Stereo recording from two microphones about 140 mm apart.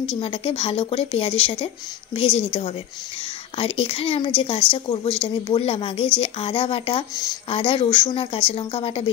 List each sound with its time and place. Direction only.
0.2 s speech: 40° left (ahead or behind)